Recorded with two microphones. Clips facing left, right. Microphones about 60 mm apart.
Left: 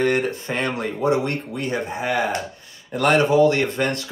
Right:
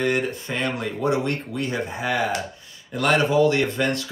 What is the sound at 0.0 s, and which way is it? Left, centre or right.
Speech, left.